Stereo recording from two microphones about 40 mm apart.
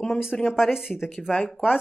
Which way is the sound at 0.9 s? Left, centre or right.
Centre.